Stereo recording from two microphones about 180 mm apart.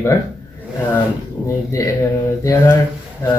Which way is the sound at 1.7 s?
15° left (ahead or behind).